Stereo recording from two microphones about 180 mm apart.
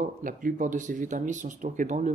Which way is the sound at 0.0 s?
50° right (ahead or behind).